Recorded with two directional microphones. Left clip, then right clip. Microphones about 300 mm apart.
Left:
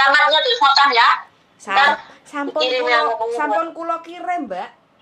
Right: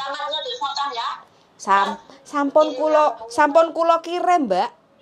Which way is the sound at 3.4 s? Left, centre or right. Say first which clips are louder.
Right 5 dB; right.